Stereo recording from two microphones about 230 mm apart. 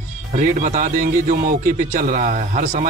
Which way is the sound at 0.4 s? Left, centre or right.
Right.